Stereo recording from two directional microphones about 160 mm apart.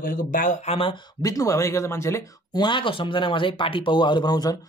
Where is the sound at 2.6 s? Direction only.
30° left (ahead or behind).